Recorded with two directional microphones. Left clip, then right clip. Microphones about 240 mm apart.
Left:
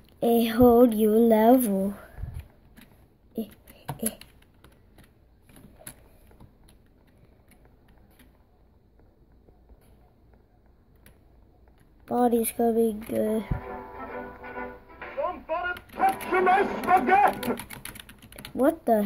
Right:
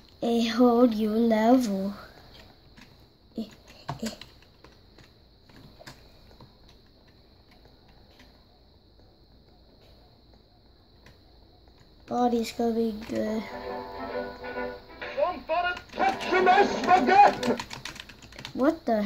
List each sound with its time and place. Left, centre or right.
0.2 s speech: centre
12.1 s music: centre
17.9 s typing: left